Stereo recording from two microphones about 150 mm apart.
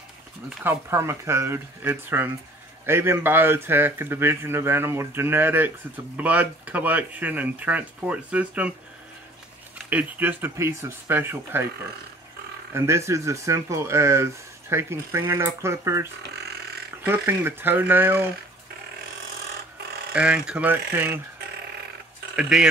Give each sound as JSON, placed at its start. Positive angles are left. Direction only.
{"t": 0.5, "sound": "speech", "side_deg": -15}
{"t": 9.8, "sound": "speech", "side_deg": -10}
{"t": 12.7, "sound": "speech", "side_deg": -20}
{"t": 20.2, "sound": "speech", "side_deg": -10}
{"t": 22.3, "sound": "speech", "side_deg": -5}